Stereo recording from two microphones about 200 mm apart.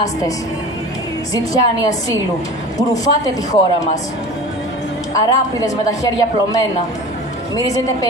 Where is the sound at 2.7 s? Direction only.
15° left (ahead or behind).